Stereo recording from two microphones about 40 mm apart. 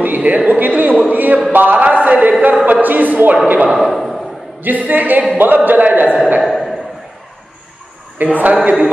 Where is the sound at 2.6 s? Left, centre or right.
Right.